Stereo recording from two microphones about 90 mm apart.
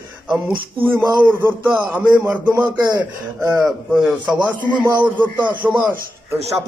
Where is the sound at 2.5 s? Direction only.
50° right (ahead or behind).